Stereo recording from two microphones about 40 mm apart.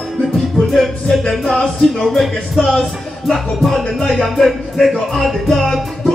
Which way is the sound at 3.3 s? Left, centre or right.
Centre.